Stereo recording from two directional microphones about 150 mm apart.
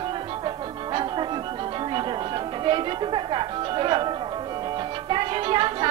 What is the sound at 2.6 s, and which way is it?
Speech, 35° right (ahead or behind).